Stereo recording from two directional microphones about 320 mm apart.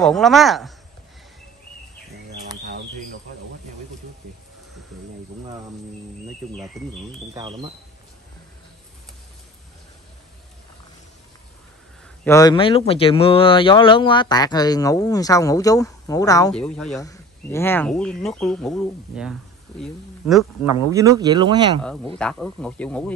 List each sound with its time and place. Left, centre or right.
0.0 s speech: centre
6.5 s speech: centre
7.3 s speech: centre
12.3 s speech: centre
20.9 s speech: centre
22.2 s speech: centre